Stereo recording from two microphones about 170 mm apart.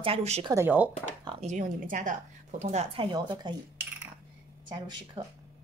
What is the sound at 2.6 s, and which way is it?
Speech, 40° right (ahead or behind).